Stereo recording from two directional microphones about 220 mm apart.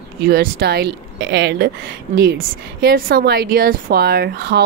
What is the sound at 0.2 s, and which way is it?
A woman's voice, 45° right (ahead or behind).